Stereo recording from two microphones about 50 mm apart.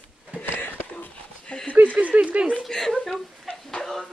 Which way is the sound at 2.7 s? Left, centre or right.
Centre.